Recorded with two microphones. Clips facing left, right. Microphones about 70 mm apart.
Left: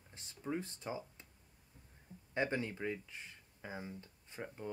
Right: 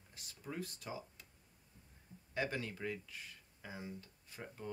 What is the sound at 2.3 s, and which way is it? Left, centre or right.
Speech, left.